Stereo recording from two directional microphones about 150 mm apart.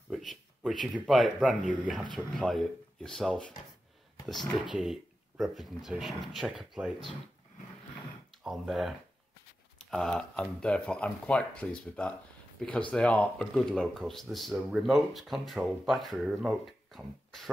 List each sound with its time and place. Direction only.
0.1 s speech: centre (ahead or behind)
5.4 s speech: centre (ahead or behind)
8.5 s speech: centre (ahead or behind)